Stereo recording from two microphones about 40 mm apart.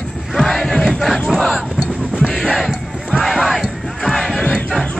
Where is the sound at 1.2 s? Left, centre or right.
Centre.